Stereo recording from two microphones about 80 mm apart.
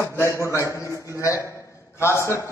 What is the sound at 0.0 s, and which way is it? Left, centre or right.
A man's voice, left.